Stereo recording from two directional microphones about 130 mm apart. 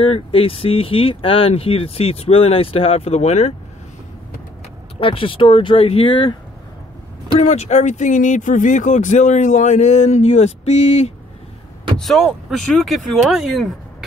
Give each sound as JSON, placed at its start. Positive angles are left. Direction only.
{"t": 0.0, "sound": "speech", "side_deg": 45}
{"t": 5.0, "sound": "speech", "side_deg": 45}
{"t": 7.3, "sound": "speech", "side_deg": 60}
{"t": 12.0, "sound": "speech", "side_deg": 0}